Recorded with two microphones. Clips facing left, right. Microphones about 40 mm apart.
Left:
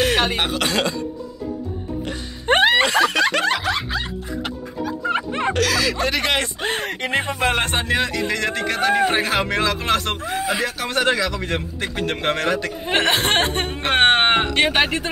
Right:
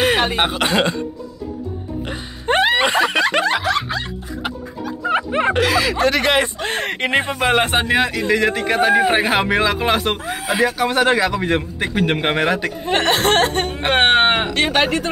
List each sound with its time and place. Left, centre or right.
0.0 s cough: right
0.4 s speech: right
2.4 s a sound: left
2.8 s snicker: right
3.6 s music: centre; by 5.9 s right
5.9 s speech: centre
6.7 s speech: right
7.0 s speech: right
7.2 s a man's voice: centre
12.8 s speech: centre
13.7 s a man's voice: centre
14.5 s speech: centre